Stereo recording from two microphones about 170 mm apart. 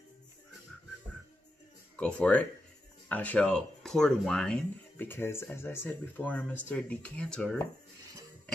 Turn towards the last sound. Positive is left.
turn(degrees=5)  # may be behind; listen again after turning